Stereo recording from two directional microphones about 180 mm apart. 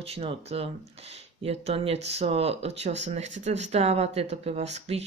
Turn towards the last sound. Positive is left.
turn(degrees=-35)  # may be behind; listen again after turning